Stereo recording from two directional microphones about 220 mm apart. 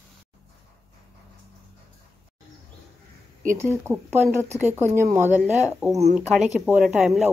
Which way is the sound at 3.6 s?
10° right (ahead or behind).